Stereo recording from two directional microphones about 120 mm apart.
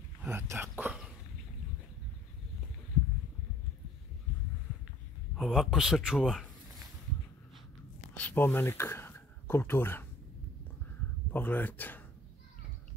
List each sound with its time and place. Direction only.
0.3 s speech: 20° right (ahead or behind)
5.3 s speech: centre (ahead or behind)
8.2 s speech: 10° left (ahead or behind)
11.3 s speech: 15° left (ahead or behind)